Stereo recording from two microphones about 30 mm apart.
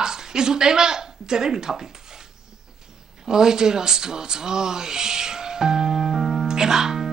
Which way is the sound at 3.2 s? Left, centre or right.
Centre.